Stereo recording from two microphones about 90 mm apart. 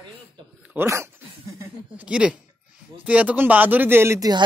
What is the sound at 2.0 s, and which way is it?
Speech, 10° right (ahead or behind).